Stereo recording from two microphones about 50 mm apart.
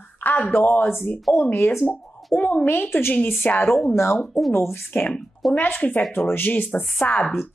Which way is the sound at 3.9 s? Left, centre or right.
Left.